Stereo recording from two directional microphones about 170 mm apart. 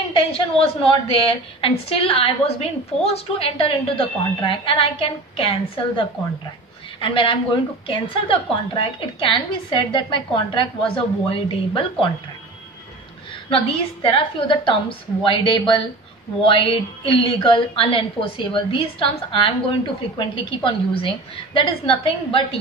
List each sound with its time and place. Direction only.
0.1 s a woman's voice: 35° left (ahead or behind)
13.5 s a woman's voice: 35° left (ahead or behind)